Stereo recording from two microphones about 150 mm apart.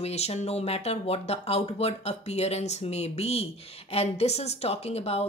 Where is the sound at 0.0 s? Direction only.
45° left (ahead or behind).